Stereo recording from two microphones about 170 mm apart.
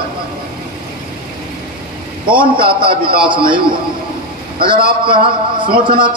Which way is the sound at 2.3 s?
30° right (ahead or behind).